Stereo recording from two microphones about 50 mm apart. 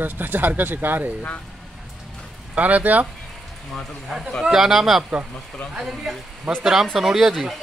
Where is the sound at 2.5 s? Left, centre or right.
Right.